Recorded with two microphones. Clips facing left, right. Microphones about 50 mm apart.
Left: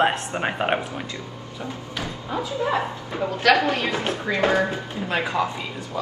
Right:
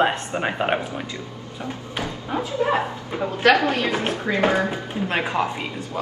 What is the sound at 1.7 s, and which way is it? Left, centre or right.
A woman's voice, right.